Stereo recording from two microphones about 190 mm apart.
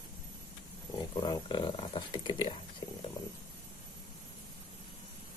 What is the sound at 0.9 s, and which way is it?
Speech, 20° left (ahead or behind).